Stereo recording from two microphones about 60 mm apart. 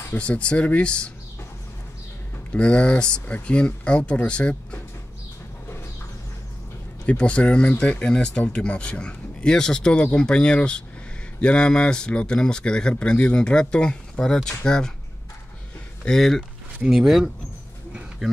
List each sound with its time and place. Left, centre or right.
0.2 s a man's voice: centre
2.5 s a man's voice: centre
7.1 s a man's voice: centre
16.1 s a man's voice: centre
16.8 s speech: centre